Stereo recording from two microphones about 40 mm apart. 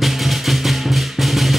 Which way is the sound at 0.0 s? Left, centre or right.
Centre.